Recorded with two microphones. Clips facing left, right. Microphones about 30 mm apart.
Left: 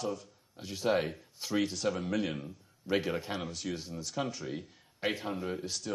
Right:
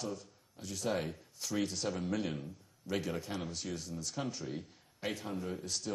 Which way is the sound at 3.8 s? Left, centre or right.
Left.